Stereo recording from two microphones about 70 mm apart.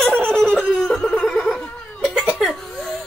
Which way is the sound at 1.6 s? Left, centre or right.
Centre.